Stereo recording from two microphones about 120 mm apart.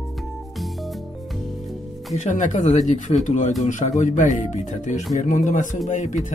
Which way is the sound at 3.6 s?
90° left.